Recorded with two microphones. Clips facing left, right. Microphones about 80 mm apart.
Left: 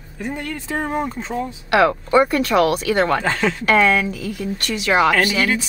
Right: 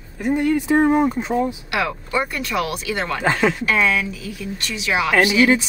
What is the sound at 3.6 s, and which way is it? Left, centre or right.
Speech, left.